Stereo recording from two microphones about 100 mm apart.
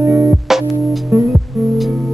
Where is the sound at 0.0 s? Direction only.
25° right (ahead or behind).